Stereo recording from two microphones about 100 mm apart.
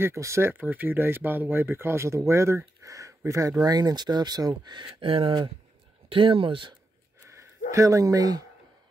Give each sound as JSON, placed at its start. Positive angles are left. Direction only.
{"t": 0.0, "sound": "speech", "side_deg": -30}
{"t": 5.0, "sound": "speech", "side_deg": -65}
{"t": 7.2, "sound": "a sound", "side_deg": -30}